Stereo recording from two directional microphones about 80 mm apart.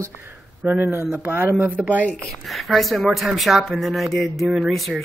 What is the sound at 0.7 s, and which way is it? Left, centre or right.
Speech, right.